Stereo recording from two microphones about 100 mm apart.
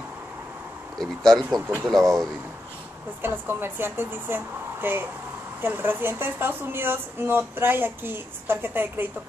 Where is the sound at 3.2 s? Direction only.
20° right (ahead or behind).